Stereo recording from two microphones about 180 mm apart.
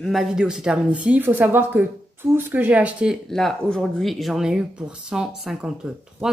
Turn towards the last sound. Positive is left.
turn(degrees=-5)  # may be behind; listen again after turning